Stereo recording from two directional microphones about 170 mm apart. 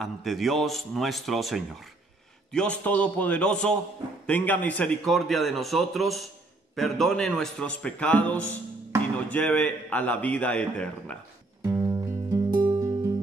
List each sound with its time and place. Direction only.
0.0 s a man's voice: centre (ahead or behind)
11.6 s music: 15° right (ahead or behind)